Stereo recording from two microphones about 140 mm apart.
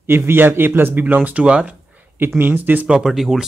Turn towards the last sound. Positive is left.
turn(degrees=0)  # may be behind; listen again after turning